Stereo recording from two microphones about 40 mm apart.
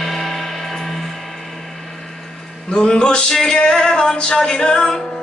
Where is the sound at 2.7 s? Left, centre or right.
Centre.